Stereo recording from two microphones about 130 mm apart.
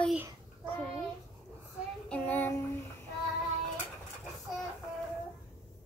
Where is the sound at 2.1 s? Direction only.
15° left (ahead or behind).